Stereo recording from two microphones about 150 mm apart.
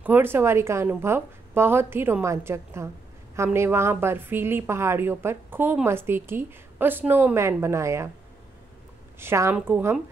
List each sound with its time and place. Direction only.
0.0 s a woman's voice: 15° right (ahead or behind)
9.2 s a woman's voice: 15° right (ahead or behind)